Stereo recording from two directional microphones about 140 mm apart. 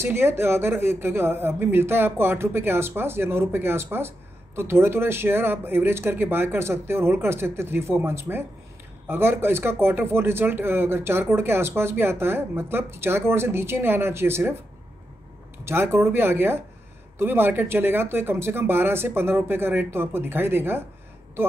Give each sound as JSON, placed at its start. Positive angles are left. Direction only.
{"t": 0.0, "sound": "a man's voice", "side_deg": -15}
{"t": 15.6, "sound": "a man's voice", "side_deg": -15}